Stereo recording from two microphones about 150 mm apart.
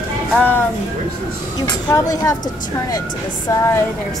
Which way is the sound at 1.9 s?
25° left (ahead or behind).